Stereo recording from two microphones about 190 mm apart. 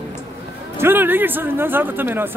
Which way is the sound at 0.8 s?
10° right (ahead or behind).